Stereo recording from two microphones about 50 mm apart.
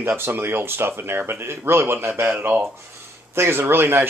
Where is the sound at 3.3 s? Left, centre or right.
Right.